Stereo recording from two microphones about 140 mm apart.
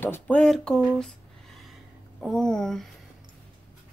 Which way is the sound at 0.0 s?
10° left (ahead or behind).